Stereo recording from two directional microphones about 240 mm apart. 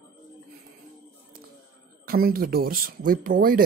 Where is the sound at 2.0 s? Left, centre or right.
Right.